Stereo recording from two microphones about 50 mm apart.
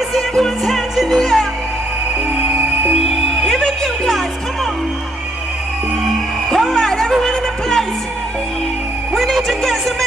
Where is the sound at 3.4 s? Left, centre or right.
Centre.